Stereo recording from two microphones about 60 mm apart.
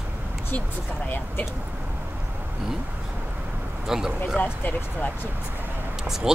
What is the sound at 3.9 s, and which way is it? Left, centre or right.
Speech, centre.